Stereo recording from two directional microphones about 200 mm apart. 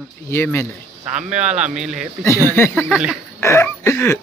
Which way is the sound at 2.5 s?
10° left (ahead or behind).